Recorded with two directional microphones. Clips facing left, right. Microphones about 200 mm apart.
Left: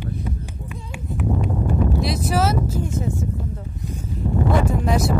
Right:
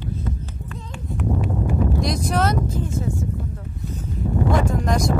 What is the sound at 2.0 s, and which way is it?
Speech, 5° left (ahead or behind).